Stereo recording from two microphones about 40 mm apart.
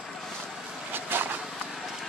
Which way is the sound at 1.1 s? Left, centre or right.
Right.